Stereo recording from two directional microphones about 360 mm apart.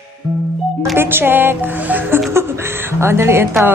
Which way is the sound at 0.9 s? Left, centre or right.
Centre.